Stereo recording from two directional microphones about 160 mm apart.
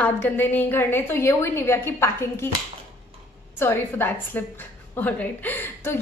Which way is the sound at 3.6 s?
15° left (ahead or behind).